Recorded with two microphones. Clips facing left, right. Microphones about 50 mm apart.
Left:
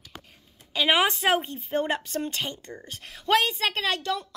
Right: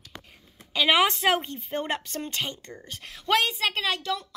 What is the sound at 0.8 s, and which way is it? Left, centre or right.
A woman's voice, centre.